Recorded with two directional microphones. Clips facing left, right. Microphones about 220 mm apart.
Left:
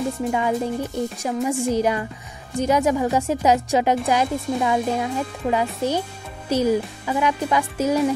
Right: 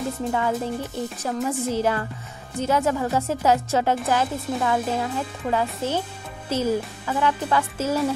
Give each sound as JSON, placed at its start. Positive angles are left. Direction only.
{"t": 0.3, "sound": "speech", "side_deg": 15}